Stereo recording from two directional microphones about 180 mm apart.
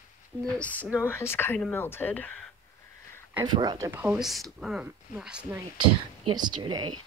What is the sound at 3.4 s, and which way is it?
Speech, 25° right (ahead or behind).